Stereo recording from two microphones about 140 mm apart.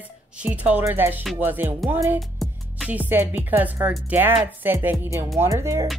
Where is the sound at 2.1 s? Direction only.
Centre (ahead or behind).